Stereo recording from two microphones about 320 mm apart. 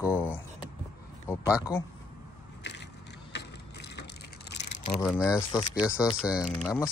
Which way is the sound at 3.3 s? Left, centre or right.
Left.